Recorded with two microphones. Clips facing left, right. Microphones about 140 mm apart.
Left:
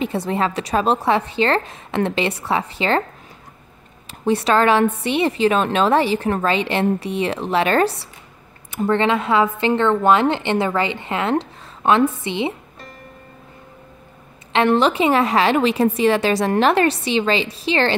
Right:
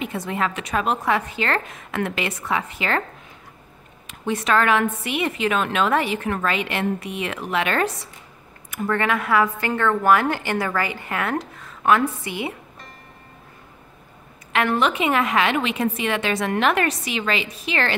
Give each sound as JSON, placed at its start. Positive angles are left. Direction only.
{"t": 0.0, "sound": "a woman's voice", "side_deg": 30}
{"t": 4.1, "sound": "a woman's voice", "side_deg": 35}
{"t": 14.5, "sound": "a woman's voice", "side_deg": 25}